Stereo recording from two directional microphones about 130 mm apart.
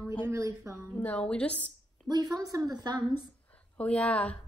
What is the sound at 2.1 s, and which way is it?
Speech, 30° right (ahead or behind).